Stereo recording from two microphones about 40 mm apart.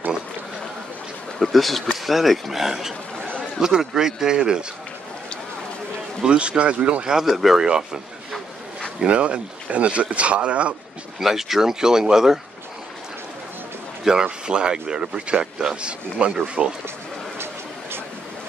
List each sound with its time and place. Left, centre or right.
1.4 s speech: centre; by 4.6 s right
6.2 s speech: right
7.1 s speech: centre
7.6 s speech: centre
9.0 s speech: right
11.1 s speech: centre
14.0 s speech: centre